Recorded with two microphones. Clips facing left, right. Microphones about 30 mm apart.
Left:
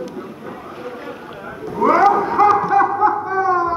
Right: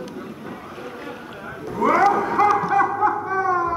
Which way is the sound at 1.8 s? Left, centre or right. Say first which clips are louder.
Left 4 dB; left.